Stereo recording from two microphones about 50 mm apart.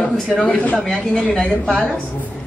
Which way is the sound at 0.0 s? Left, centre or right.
Left.